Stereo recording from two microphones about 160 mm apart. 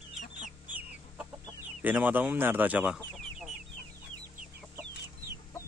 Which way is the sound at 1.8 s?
10° right (ahead or behind).